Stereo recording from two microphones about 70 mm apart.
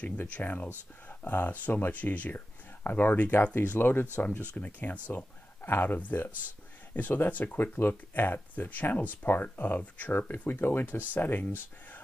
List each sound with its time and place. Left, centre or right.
0.0 s speech: left